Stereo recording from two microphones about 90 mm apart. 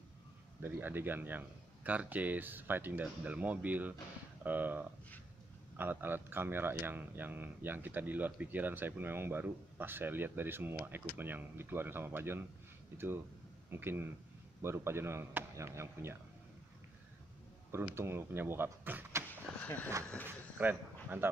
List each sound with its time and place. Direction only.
0.6 s speech: 25° right (ahead or behind)
17.9 s speech: 30° right (ahead or behind)
19.6 s speech: 20° left (ahead or behind)
20.2 s speech: 20° right (ahead or behind)